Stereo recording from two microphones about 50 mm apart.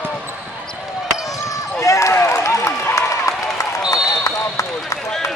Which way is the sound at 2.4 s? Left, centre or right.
Left.